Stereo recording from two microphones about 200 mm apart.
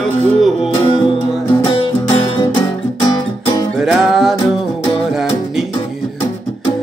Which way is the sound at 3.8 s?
Centre (ahead or behind).